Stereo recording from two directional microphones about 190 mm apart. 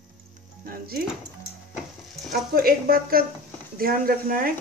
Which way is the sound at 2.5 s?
50° right (ahead or behind).